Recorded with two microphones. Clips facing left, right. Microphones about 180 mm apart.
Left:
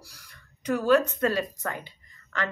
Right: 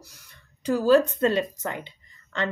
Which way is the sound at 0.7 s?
30° right (ahead or behind).